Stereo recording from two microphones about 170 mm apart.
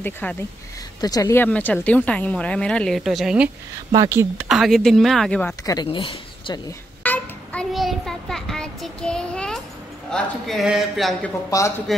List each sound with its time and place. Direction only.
0.0 s a woman's voice: 10° left (ahead or behind)
1.0 s a woman's voice: 20° left (ahead or behind); by 3.4 s centre (ahead or behind)
3.9 s a woman's voice: 20° right (ahead or behind)
4.5 s speech: centre (ahead or behind)
5.9 s speech: 35° left (ahead or behind)
7.0 s child singing: 5° left (ahead or behind)
10.1 s speech: centre (ahead or behind)